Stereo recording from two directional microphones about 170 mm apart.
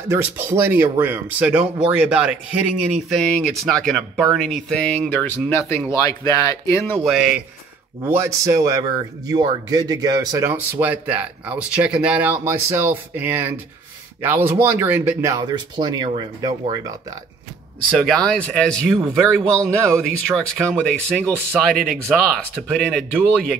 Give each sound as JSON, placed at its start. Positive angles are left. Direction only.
{"t": 0.1, "sound": "speech", "side_deg": -15}
{"t": 3.1, "sound": "speech", "side_deg": 5}
{"t": 7.0, "sound": "speech", "side_deg": 0}
{"t": 8.0, "sound": "speech", "side_deg": -15}
{"t": 17.9, "sound": "speech", "side_deg": 0}